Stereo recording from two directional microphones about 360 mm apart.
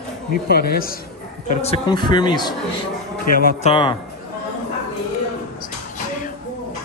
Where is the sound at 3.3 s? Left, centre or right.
Left.